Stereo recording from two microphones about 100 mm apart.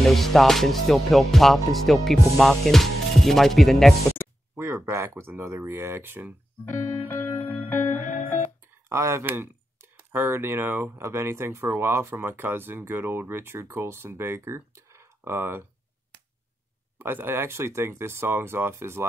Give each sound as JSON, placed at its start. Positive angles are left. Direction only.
{"t": 0.0, "sound": "music", "side_deg": 0}
{"t": 4.6, "sound": "speech", "side_deg": -25}
{"t": 6.6, "sound": "music", "side_deg": 25}
{"t": 7.0, "sound": "music", "side_deg": 70}
{"t": 8.8, "sound": "speech", "side_deg": -30}
{"t": 17.0, "sound": "speech", "side_deg": -20}